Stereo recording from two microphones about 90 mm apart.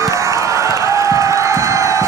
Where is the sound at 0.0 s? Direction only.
35° right (ahead or behind).